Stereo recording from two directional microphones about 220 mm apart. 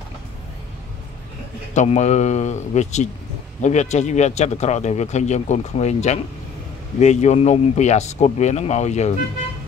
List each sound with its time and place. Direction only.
1.7 s speech: 30° left (ahead or behind)